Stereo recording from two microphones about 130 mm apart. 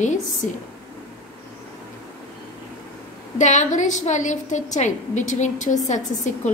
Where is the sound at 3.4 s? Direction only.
70° left (ahead or behind).